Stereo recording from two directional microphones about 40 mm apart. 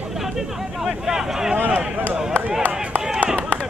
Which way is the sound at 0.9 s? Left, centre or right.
Centre.